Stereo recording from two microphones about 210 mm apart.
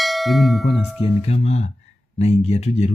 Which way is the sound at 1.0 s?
30° left (ahead or behind).